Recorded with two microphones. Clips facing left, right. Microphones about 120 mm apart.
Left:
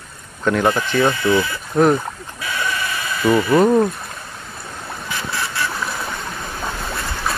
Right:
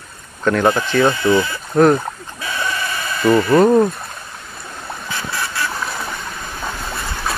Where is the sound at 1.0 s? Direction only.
20° right (ahead or behind).